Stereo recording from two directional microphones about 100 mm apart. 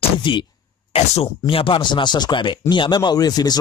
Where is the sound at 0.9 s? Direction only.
90° left.